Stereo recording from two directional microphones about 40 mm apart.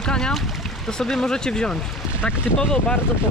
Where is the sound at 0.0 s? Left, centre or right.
Centre.